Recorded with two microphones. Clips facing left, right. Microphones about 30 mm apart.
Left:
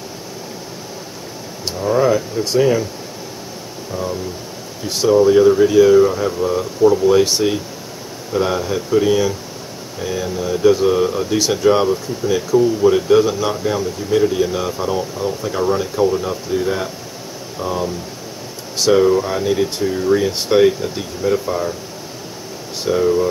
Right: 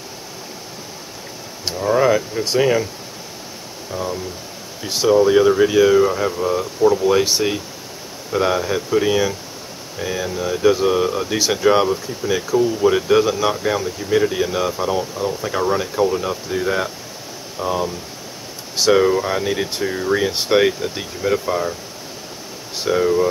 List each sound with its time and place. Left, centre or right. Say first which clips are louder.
1.7 s speech: even; centre
3.9 s speech: left 1 dB; centre
22.8 s speech: left 1 dB; centre